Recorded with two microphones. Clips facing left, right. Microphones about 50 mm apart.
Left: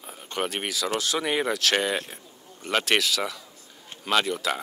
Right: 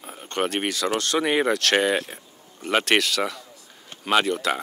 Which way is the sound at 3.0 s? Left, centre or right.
Centre.